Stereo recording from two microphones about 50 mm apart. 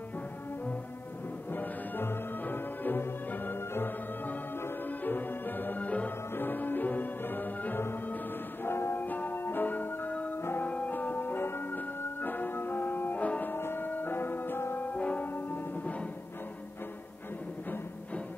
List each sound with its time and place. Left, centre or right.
1.5 s music: left
6.3 s music: left
8.6 s music: left
9.0 s music: left
13.5 s music: left
14.8 s music: left
15.3 s music: left
15.8 s music: left